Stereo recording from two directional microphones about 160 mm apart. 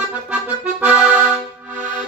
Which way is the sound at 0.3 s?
10° right (ahead or behind).